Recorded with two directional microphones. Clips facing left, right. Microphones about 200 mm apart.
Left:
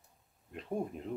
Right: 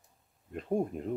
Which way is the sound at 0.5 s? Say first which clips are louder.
Right 6 dB; 45° right (ahead or behind).